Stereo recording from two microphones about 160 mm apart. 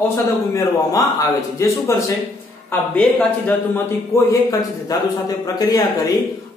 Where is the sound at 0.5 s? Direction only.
20° left (ahead or behind).